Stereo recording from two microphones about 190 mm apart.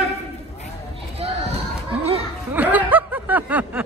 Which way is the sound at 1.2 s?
30° right (ahead or behind).